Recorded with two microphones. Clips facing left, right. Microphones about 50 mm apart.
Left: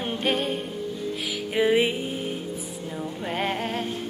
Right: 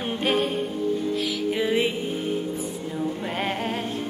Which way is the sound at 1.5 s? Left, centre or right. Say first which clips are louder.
Left 4 dB; centre.